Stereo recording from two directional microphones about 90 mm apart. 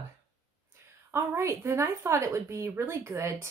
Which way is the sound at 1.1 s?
30° right (ahead or behind).